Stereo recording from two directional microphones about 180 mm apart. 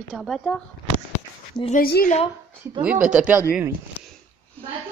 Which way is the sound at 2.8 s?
5° right (ahead or behind).